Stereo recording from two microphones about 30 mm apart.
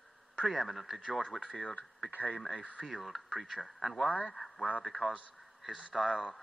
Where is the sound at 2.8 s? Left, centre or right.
Centre.